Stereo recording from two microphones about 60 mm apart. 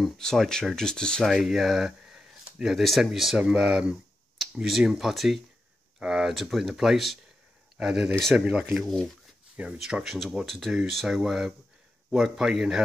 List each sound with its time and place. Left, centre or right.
0.0 s speech: centre
1.2 s speech: centre
4.6 s speech: centre
9.6 s speech: right
10.0 s speech: centre